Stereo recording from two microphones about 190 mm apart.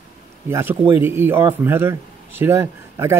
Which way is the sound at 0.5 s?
10° right (ahead or behind).